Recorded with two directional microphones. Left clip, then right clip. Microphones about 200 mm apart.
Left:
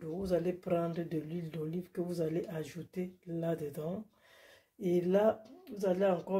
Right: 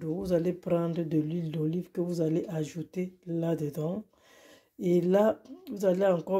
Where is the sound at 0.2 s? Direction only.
35° right (ahead or behind).